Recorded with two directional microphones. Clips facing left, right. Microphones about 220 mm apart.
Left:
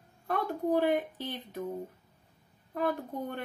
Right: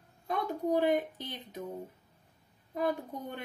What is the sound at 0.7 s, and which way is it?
Speech, 15° right (ahead or behind).